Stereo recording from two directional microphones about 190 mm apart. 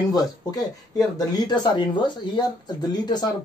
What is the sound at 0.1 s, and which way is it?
Speech, 20° left (ahead or behind).